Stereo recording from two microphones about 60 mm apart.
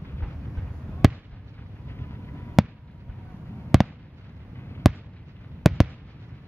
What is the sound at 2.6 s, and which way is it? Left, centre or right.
Fireworks, centre.